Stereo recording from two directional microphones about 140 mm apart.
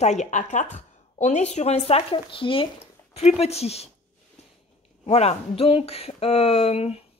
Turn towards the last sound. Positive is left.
turn(degrees=45)  # may be behind; listen again after turning